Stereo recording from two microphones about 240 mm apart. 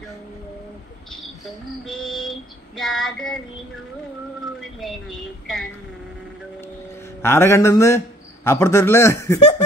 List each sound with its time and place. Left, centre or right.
2.0 s female singing: centre
3.1 s child singing: centre
4.6 s a sound: centre
7.2 s speech: centre